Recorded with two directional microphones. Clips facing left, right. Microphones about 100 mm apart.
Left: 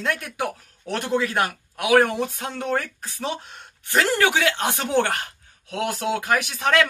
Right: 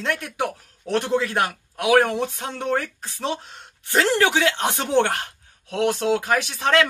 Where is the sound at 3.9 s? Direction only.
25° right (ahead or behind).